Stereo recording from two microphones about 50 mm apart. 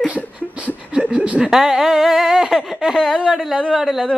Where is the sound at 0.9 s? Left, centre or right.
Right.